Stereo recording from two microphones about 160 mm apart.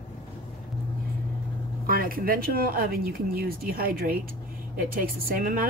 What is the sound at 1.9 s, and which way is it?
Speech, 65° right (ahead or behind).